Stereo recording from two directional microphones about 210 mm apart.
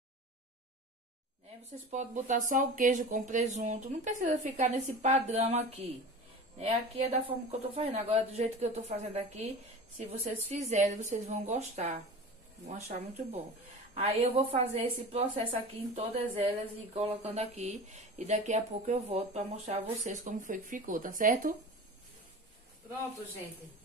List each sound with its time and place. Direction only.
1.9 s speech: 35° right (ahead or behind)
13.9 s a woman's voice: 30° right (ahead or behind)